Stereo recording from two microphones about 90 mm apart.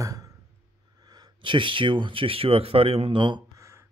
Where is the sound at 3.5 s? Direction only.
35° right (ahead or behind).